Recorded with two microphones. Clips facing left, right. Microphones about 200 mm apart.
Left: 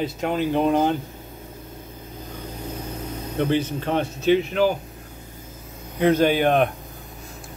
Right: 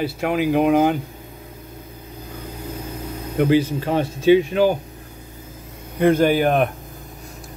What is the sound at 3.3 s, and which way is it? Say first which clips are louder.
Speech: right 5 dB; 10° right (ahead or behind).